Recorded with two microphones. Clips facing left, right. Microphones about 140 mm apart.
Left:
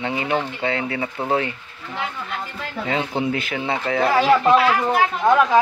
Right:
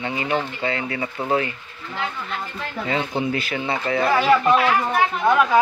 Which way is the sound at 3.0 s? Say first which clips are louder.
Left 1 dB; 20° left (ahead or behind).